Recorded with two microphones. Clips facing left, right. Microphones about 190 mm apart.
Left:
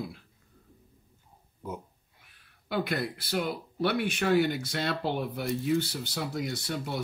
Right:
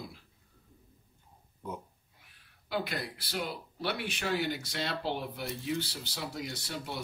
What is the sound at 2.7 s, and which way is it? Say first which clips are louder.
Speech: left 5 dB; 50° left (ahead or behind).